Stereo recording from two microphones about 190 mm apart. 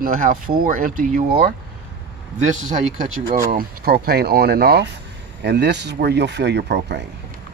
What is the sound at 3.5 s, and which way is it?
Speech, 50° right (ahead or behind).